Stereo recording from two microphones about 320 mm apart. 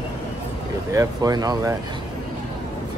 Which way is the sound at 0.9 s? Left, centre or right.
Centre.